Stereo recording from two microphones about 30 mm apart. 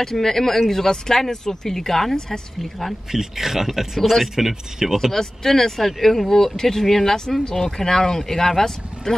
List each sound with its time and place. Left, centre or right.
0.0 s speech: centre
2.1 s a woman's voice: left
3.1 s speech: centre
5.1 s speech: centre